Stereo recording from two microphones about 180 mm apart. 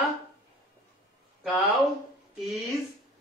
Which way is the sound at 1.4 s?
Centre (ahead or behind).